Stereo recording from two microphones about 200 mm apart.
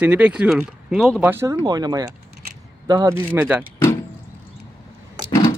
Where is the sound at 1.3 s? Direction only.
15° right (ahead or behind).